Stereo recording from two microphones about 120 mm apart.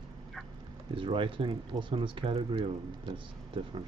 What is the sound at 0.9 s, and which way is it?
Speech, 45° right (ahead or behind).